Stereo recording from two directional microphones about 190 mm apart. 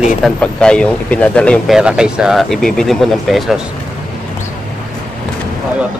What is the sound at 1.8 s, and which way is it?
Speech, 5° right (ahead or behind).